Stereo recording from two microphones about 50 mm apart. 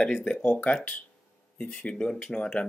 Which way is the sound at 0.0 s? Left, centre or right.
Left.